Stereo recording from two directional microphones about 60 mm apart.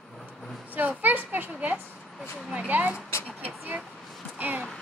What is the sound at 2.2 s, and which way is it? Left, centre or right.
Speech, centre.